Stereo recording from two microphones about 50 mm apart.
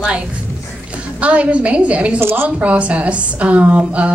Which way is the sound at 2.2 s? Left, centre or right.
Right.